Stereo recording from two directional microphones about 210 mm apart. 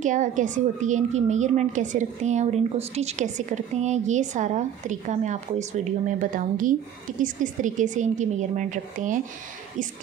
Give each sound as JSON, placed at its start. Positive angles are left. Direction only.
{"t": 0.0, "sound": "a woman's voice", "side_deg": -35}